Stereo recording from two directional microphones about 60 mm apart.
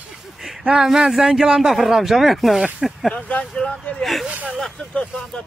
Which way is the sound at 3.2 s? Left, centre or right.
Left.